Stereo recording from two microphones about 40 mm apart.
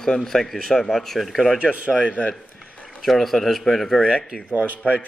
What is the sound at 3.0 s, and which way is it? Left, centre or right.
Speech, centre.